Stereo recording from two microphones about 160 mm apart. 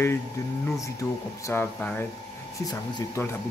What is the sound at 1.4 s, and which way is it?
Speech, 15° left (ahead or behind).